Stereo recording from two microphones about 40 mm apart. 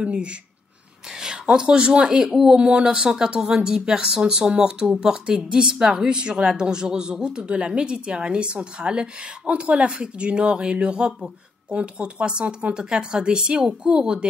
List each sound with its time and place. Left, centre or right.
0.0 s a woman's voice: right